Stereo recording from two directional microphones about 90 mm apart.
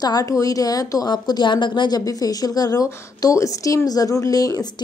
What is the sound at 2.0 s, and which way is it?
A woman's voice, 45° left (ahead or behind).